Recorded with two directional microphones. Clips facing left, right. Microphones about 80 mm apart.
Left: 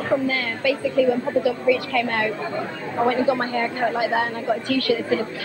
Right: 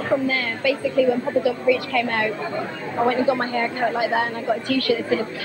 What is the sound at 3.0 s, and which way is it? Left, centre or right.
Speech, centre.